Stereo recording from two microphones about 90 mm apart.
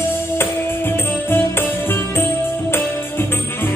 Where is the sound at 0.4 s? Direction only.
25° left (ahead or behind).